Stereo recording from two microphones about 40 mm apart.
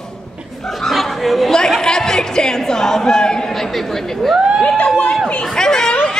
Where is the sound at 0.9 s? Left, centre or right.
Centre.